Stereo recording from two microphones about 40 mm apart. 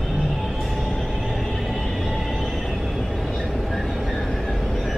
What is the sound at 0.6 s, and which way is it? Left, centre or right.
Music, centre.